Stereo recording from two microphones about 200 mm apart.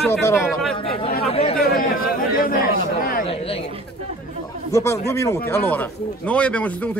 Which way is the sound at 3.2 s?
30° left (ahead or behind).